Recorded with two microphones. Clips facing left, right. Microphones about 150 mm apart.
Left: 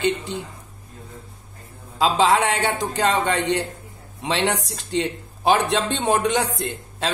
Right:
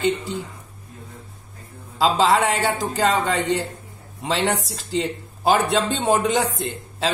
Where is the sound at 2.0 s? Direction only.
Centre (ahead or behind).